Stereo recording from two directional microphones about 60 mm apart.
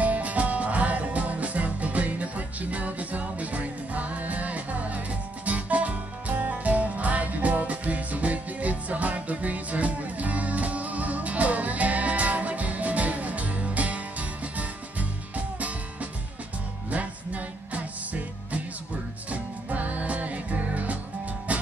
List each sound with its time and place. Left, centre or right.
0.0 s music: right